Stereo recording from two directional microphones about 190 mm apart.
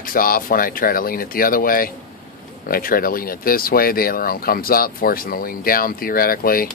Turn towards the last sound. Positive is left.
turn(degrees=50)  # may be behind; listen again after turning